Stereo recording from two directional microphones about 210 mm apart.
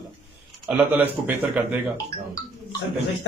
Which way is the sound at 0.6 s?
10° right (ahead or behind).